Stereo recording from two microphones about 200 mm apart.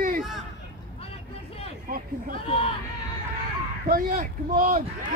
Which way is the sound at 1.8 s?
45° right (ahead or behind).